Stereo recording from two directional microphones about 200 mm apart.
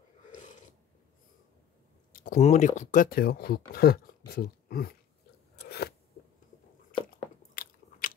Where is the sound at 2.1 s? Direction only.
45° left (ahead or behind).